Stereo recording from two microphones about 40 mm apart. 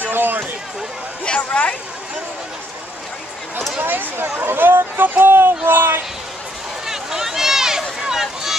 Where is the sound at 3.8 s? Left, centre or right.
Right.